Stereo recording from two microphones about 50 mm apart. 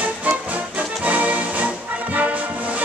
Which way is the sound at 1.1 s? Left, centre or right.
Right.